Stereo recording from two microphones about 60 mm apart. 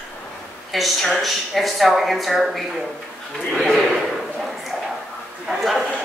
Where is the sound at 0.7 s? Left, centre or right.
Centre.